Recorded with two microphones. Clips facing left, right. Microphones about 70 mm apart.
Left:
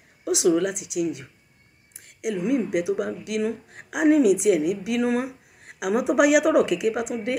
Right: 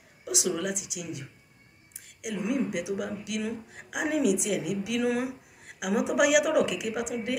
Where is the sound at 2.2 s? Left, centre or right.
Left.